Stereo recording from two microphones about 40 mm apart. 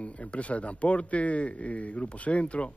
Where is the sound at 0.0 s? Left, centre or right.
Left.